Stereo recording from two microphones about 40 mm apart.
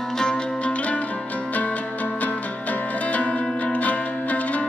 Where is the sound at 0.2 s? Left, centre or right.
Centre.